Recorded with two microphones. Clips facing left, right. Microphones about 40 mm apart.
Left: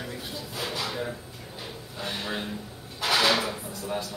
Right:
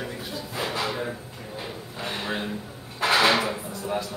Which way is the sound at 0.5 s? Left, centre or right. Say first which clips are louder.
Right 4 dB; right.